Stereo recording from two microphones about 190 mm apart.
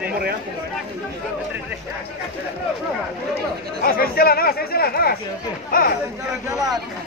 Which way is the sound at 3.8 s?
50° left (ahead or behind).